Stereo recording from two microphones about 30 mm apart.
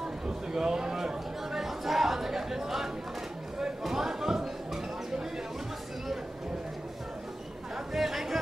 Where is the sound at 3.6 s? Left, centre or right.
Centre.